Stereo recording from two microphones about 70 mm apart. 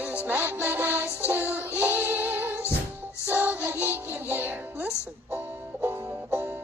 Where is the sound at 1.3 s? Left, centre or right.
Right.